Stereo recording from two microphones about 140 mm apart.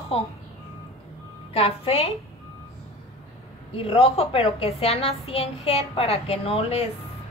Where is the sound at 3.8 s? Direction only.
45° left (ahead or behind).